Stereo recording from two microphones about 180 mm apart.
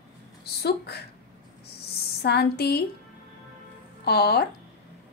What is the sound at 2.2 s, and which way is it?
Speech, 65° left (ahead or behind).